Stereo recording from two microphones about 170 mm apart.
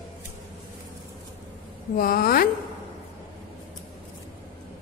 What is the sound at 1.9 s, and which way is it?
Speech, 60° left (ahead or behind).